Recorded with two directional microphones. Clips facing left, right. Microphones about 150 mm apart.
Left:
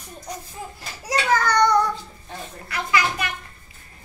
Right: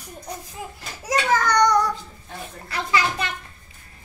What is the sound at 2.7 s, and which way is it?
Speech, 30° right (ahead or behind).